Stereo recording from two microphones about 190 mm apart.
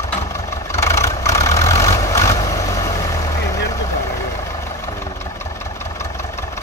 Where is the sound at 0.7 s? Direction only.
15° left (ahead or behind).